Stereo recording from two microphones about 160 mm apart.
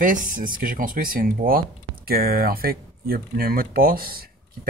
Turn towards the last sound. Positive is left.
turn(degrees=-70)  # may be behind; listen again after turning